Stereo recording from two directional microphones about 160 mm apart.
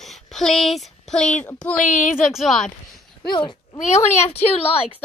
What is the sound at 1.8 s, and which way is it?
Speech, 50° left (ahead or behind).